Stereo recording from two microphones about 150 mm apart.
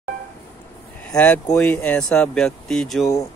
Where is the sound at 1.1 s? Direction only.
10° left (ahead or behind).